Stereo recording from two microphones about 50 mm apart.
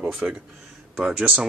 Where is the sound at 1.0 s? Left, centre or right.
Centre.